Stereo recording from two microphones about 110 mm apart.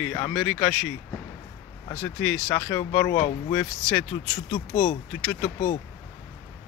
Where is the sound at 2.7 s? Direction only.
25° left (ahead or behind).